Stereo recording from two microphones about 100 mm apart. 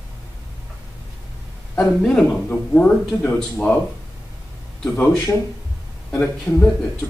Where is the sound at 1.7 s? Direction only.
5° left (ahead or behind).